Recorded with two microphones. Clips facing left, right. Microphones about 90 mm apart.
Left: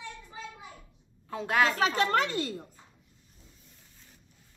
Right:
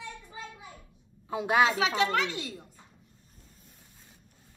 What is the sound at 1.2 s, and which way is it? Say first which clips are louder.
Speech: right 3 dB; 15° right (ahead or behind).